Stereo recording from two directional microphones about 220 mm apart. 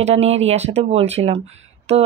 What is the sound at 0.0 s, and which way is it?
Speech, 30° right (ahead or behind).